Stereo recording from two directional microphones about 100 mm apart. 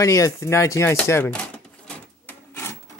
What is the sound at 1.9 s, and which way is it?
Printer, 15° left (ahead or behind).